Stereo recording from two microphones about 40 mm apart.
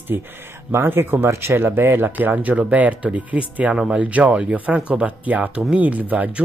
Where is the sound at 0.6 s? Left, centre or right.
Right.